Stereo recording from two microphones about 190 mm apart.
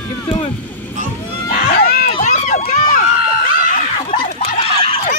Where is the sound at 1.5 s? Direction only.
40° left (ahead or behind).